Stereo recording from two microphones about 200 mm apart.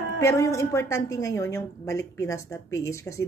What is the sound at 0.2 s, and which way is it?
Speech, 15° left (ahead or behind).